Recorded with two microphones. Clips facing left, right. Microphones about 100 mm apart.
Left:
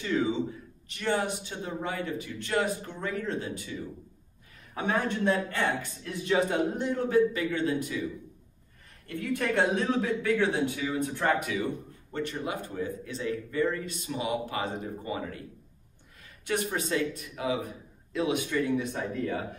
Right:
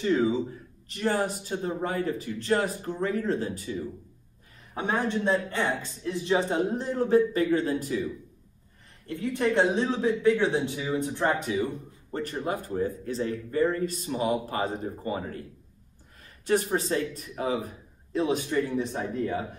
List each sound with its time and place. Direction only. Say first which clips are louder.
0.0 s a man's voice: right 4 dB; 35° right (ahead or behind)
5.2 s a man's voice: right 1 dB; 20° right (ahead or behind); by 8.0 s 35° right (ahead or behind)
9.0 s a man's voice: right 3 dB; 20° right (ahead or behind); by 15.4 s 40° right (ahead or behind)
16.4 s a man's voice: right 5 dB; 35° right (ahead or behind)